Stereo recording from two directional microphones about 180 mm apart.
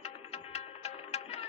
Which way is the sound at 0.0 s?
35° left (ahead or behind).